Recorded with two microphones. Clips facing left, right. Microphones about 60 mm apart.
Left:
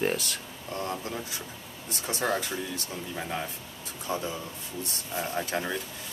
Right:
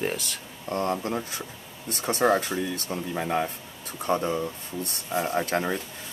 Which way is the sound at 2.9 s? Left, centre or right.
Right.